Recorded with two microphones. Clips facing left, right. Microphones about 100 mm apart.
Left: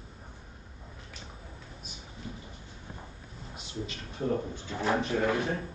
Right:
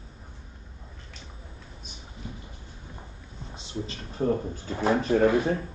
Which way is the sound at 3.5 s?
30° right (ahead or behind).